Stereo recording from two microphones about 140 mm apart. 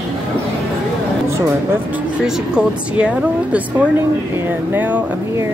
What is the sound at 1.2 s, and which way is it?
Speech, 20° right (ahead or behind).